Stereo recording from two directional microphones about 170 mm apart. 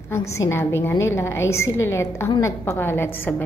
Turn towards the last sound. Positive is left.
turn(degrees=10)  # may be behind; listen again after turning